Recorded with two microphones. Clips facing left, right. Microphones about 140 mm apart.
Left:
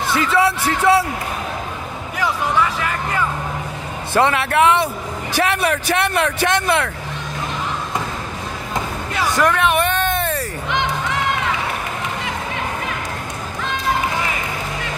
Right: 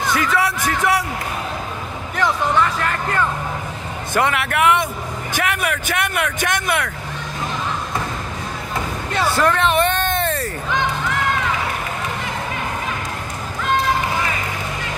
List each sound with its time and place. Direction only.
0.1 s speech: 25° left (ahead or behind)
2.8 s speech: 5° left (ahead or behind)
4.1 s speech: 25° left (ahead or behind)
9.1 s a sound: 10° left (ahead or behind)